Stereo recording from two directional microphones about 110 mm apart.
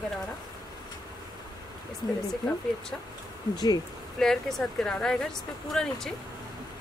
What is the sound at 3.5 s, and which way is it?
Speech, 40° left (ahead or behind).